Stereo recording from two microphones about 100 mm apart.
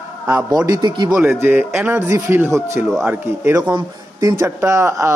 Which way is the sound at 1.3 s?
20° right (ahead or behind).